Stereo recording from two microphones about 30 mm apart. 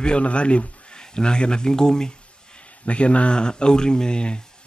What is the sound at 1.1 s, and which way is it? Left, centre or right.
Speech, left.